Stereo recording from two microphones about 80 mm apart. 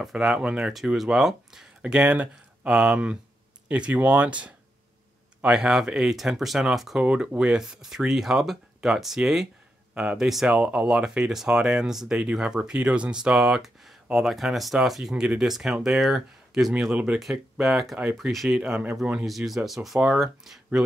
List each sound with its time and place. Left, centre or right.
0.0 s speech: centre
7.0 s speech: centre
16.9 s speech: centre
17.2 s speech: centre